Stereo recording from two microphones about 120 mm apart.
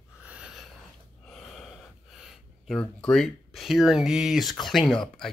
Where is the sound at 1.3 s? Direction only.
5° left (ahead or behind).